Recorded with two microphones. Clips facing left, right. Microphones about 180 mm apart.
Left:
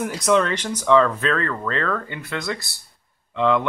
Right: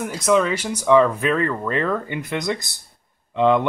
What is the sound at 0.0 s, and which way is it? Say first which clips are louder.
Speech: right 1 dB; centre (ahead or behind).